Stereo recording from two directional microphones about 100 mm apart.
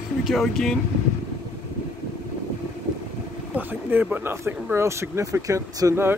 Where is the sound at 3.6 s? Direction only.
20° right (ahead or behind).